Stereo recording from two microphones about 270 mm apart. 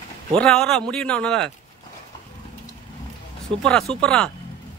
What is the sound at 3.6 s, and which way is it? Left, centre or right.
Speech, centre.